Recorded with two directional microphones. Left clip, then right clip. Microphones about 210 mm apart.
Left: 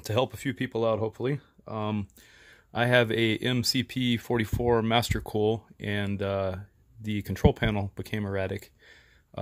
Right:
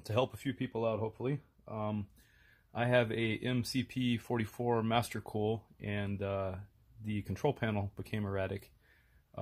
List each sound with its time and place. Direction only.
0.0 s speech: 35° left (ahead or behind)
9.3 s speech: 45° left (ahead or behind)